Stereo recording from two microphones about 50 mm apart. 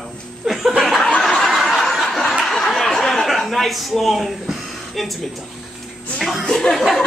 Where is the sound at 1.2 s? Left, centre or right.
Centre.